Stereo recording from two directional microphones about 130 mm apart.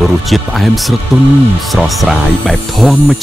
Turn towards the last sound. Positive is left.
turn(degrees=0)  # may be behind; listen again after turning